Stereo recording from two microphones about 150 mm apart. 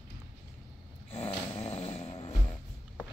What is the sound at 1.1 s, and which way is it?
Snoring, 45° left (ahead or behind).